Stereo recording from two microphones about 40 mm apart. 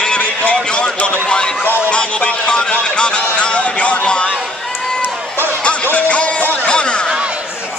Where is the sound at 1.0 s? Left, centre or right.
Left.